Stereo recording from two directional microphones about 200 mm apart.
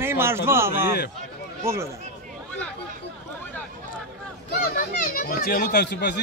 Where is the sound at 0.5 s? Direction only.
10° right (ahead or behind).